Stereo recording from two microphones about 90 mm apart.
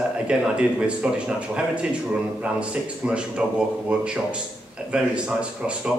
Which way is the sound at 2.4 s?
15° right (ahead or behind).